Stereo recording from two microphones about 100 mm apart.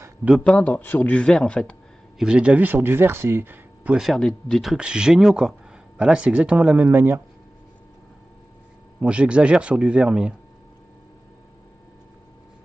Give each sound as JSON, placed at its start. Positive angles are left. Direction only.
{"t": 0.4, "sound": "a man's voice", "side_deg": 10}
{"t": 2.1, "sound": "speech", "side_deg": -10}
{"t": 3.9, "sound": "speech", "side_deg": 0}
{"t": 9.0, "sound": "speech", "side_deg": -10}